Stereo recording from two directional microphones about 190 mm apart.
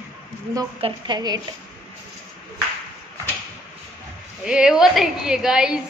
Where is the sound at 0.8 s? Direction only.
25° right (ahead or behind).